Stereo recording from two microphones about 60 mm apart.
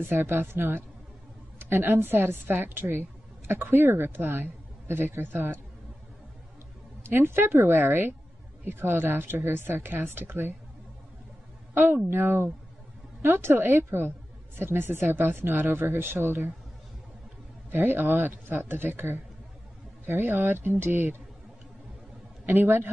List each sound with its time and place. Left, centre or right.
0.0 s a woman's voice: right
7.0 s a woman's voice: right
11.7 s a woman's voice: right
17.6 s a man's voice: right
22.5 s a woman's voice: right